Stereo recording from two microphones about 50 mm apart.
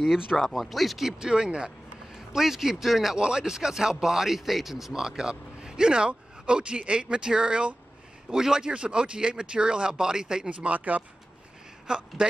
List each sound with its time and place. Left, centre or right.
0.0 s speech: centre
1.2 s a man's voice: centre
3.2 s speech: centre
10.6 s speech: right
11.9 s speech: centre